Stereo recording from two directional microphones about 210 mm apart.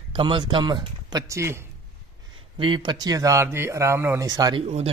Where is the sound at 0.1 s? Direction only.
25° right (ahead or behind).